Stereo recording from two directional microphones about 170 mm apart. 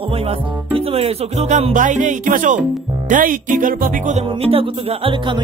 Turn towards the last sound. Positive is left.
turn(degrees=-30)  # may be behind; listen again after turning